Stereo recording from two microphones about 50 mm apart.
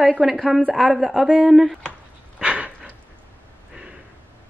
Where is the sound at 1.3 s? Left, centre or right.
Centre.